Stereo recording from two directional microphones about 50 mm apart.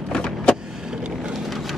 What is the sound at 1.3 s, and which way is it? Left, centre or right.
Vehicle, centre.